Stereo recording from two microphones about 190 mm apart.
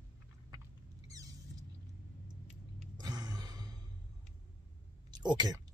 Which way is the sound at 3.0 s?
20° right (ahead or behind).